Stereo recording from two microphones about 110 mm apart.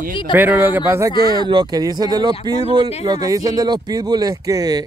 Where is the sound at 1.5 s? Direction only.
40° right (ahead or behind).